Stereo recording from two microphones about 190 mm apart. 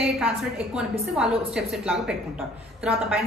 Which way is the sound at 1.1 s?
5° right (ahead or behind).